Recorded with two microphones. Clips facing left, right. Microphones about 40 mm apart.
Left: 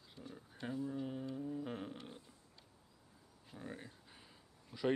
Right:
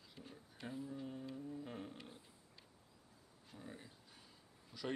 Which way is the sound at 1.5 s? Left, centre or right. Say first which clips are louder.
Left 5 dB; left.